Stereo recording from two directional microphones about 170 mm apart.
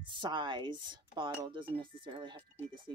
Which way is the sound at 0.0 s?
25° right (ahead or behind).